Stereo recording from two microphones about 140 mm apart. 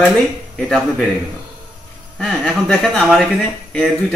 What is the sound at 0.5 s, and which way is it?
Speech, 5° left (ahead or behind).